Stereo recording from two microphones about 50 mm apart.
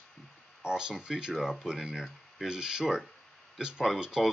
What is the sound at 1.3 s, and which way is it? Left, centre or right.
Speech, centre.